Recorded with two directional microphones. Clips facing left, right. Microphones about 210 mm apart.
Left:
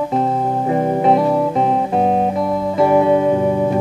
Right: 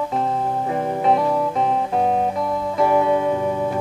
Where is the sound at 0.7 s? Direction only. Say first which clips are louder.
Left 5 dB; 20° left (ahead or behind).